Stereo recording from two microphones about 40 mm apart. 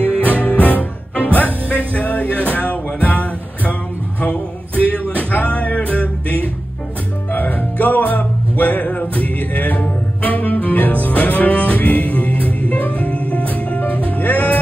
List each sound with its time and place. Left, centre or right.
0.0 s music: left
4.2 s a sound: left
5.1 s music: left